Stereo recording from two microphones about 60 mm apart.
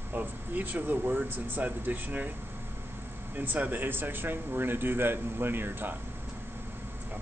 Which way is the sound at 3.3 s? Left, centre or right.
Right.